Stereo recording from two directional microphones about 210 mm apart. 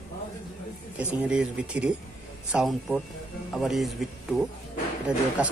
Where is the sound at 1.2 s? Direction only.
5° right (ahead or behind).